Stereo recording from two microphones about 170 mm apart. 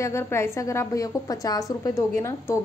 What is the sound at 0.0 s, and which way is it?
A woman's voice, 15° left (ahead or behind).